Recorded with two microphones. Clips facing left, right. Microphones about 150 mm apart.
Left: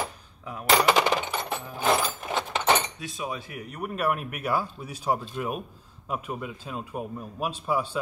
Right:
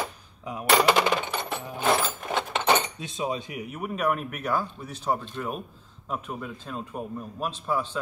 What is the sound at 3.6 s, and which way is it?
A man's voice, 5° right (ahead or behind).